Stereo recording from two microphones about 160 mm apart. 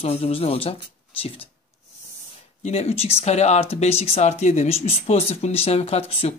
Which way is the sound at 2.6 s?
40° left (ahead or behind).